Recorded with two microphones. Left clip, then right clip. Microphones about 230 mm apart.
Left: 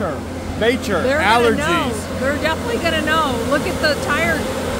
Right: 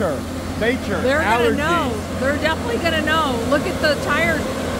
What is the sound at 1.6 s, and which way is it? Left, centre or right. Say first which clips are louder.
Speech: left 1 dB; centre.